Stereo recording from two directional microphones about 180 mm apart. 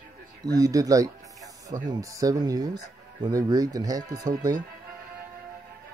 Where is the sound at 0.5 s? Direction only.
20° right (ahead or behind).